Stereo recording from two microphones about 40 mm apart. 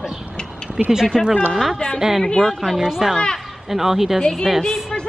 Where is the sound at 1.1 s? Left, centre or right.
Centre.